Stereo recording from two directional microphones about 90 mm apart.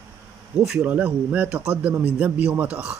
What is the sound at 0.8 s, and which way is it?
A man's voice, 20° right (ahead or behind).